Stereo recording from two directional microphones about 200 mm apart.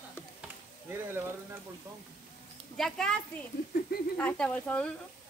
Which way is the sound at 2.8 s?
5° left (ahead or behind).